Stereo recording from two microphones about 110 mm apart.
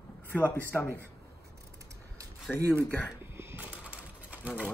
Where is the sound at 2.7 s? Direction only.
20° right (ahead or behind).